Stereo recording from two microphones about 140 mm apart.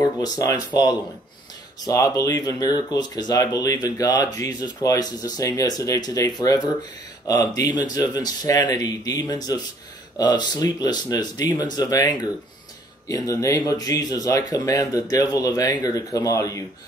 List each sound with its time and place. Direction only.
0.0 s speech: 25° left (ahead or behind)
1.9 s speech: 25° left (ahead or behind)